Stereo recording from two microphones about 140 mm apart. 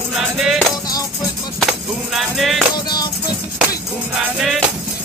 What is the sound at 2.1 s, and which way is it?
Music, centre (ahead or behind).